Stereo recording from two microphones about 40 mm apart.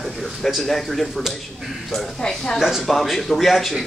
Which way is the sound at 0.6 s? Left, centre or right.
Centre.